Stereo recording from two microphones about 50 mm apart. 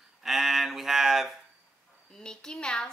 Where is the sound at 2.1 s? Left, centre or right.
Centre.